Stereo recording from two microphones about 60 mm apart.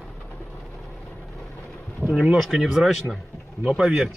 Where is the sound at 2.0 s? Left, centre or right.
Right.